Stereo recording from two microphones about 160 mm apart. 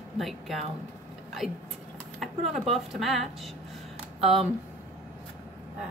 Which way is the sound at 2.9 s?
Centre (ahead or behind).